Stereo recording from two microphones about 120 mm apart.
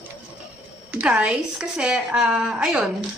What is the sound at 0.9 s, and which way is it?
Speech, 10° right (ahead or behind).